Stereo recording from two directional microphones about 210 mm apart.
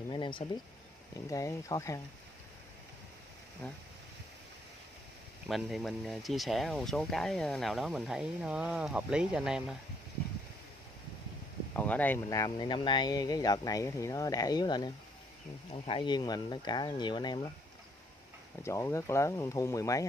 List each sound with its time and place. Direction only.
0.1 s a sound: 25° left (ahead or behind)
1.3 s speech: 15° left (ahead or behind)
3.6 s speech: 5° left (ahead or behind)
5.5 s speech: centre (ahead or behind)
11.7 s speech: 10° left (ahead or behind)
18.6 s speech: 15° left (ahead or behind)